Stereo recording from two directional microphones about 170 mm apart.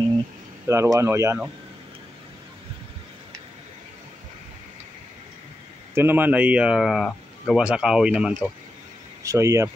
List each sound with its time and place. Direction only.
0.7 s speech: 15° right (ahead or behind)
5.9 s speech: 10° right (ahead or behind)
9.2 s speech: 20° right (ahead or behind)